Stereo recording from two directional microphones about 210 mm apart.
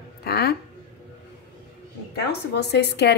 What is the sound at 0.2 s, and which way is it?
Speech, 50° left (ahead or behind).